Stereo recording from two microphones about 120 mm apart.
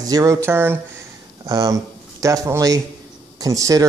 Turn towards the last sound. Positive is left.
turn(degrees=-30)  # may be behind; listen again after turning